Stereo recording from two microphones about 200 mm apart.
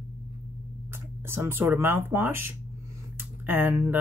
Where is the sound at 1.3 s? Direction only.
10° right (ahead or behind).